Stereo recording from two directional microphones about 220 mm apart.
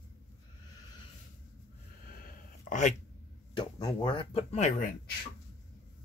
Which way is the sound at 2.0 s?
40° left (ahead or behind).